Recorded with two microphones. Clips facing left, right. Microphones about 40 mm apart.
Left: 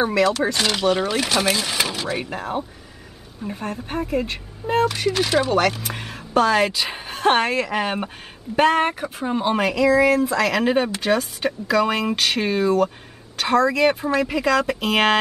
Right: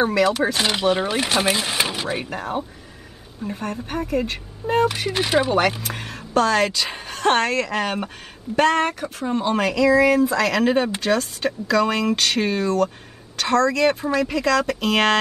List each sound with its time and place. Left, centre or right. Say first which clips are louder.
0.0 s speech: even; centre
0.3 s speech: even; centre
2.2 s speech: even; centre
5.1 s speech: even; centre
5.8 s speech: even; centre